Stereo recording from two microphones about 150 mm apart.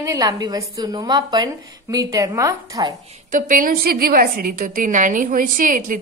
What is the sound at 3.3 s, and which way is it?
A woman's voice, 60° right (ahead or behind).